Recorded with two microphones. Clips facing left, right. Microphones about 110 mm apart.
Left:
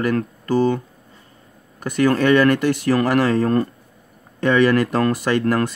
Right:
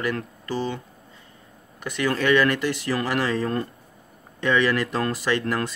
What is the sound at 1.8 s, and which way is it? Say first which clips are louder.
Speech: left 6 dB; 45° left (ahead or behind).